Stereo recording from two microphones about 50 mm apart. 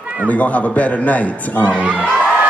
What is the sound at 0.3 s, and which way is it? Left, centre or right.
A man's voice, left.